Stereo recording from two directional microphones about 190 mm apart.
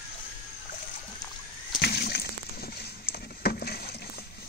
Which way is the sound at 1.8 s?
55° left (ahead or behind).